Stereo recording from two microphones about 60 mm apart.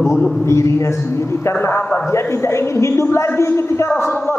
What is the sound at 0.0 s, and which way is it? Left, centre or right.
A man's voice, left.